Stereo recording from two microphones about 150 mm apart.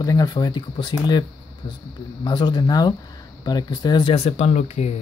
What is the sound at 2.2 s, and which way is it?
Speech, 30° left (ahead or behind).